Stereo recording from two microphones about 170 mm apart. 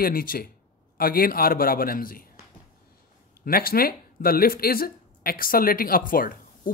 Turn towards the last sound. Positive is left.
turn(degrees=55)  # may be behind; listen again after turning